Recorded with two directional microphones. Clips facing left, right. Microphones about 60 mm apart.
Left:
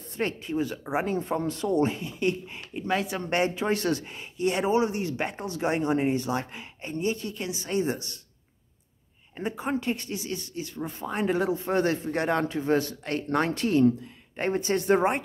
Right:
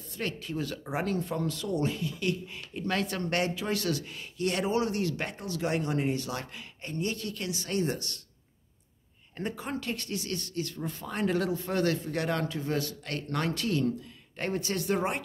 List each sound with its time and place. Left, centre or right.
0.2 s speech: left
2.8 s speech: centre
9.4 s speech: centre